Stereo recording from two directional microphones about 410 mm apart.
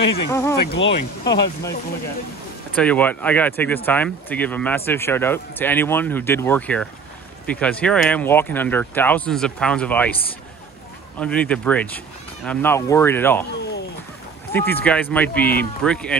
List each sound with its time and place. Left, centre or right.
0.3 s speech: centre
0.7 s speech: left
1.2 s speech: centre
2.7 s speech: centre
11.1 s speech: centre
14.5 s speech: centre